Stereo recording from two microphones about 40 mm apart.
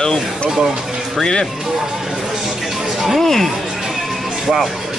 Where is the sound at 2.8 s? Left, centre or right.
Centre.